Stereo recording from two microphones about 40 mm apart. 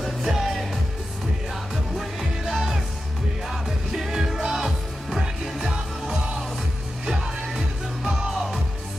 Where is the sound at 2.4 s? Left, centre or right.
Centre.